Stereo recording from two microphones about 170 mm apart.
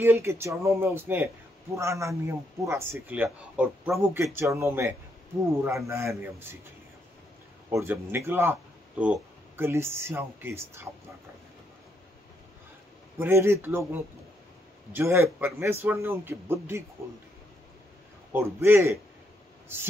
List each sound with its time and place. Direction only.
0.0 s a man's voice: 15° right (ahead or behind)
7.7 s a man's voice: 15° right (ahead or behind)
13.2 s a man's voice: 15° right (ahead or behind)
18.3 s a man's voice: 15° right (ahead or behind)